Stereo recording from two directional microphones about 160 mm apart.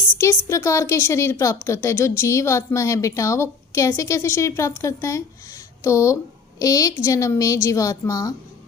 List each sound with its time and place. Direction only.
0.2 s a woman's voice: 20° left (ahead or behind)